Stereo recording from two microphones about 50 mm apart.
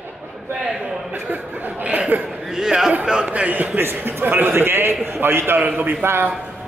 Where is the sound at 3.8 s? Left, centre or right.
Right.